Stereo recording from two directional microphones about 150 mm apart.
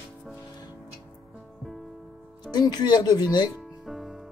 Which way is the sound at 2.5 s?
30° left (ahead or behind).